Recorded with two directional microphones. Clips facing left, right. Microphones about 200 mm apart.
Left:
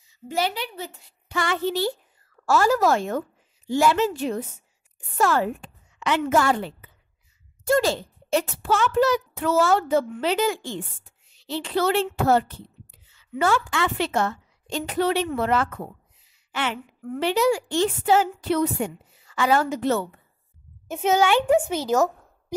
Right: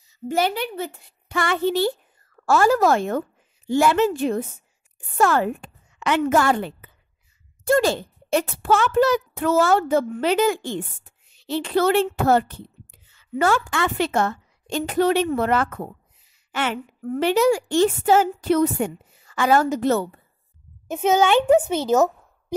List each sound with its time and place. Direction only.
0.3 s a child's voice: 50° right (ahead or behind)
20.9 s a child's voice: 20° right (ahead or behind)